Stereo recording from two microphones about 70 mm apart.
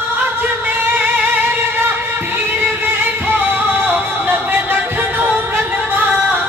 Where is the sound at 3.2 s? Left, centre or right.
Right.